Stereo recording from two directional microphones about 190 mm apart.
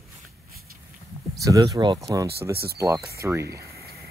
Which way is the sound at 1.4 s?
20° right (ahead or behind).